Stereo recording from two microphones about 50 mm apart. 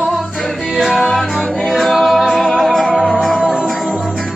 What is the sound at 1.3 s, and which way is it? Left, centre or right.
Music, centre.